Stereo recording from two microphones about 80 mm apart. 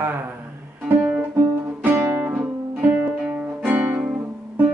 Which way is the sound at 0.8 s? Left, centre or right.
Centre.